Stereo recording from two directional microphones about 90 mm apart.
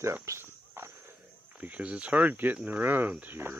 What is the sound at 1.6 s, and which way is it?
Speech, 15° right (ahead or behind).